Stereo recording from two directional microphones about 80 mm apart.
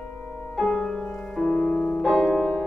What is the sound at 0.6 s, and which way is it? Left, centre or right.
Music, centre.